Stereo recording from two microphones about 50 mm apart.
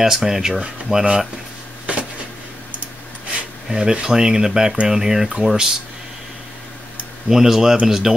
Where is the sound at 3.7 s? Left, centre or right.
Centre.